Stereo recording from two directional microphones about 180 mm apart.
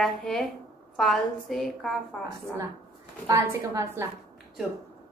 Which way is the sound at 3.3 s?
15° right (ahead or behind).